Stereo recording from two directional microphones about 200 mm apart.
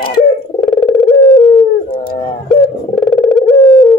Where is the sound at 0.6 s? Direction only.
5° left (ahead or behind).